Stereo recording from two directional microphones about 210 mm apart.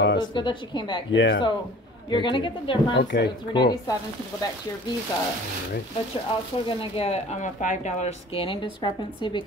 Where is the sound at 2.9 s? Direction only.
55° left (ahead or behind).